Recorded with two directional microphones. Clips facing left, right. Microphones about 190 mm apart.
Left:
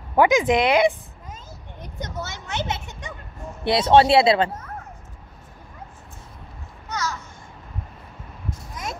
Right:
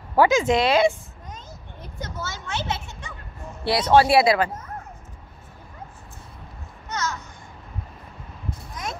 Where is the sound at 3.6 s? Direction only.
25° left (ahead or behind).